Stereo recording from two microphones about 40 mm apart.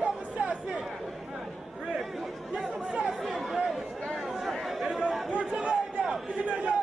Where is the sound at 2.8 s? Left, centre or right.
Right.